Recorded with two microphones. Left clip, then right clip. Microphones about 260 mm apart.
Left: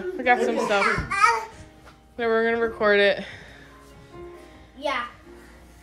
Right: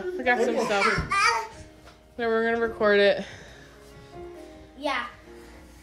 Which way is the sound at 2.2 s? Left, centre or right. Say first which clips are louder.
Left 2 dB; centre.